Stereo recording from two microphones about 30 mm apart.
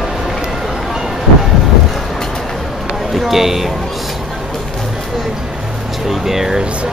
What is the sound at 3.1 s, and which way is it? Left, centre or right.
Speech, centre.